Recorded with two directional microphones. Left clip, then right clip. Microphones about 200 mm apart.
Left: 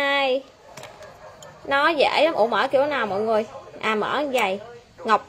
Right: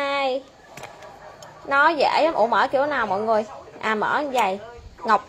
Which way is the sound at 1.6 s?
15° left (ahead or behind).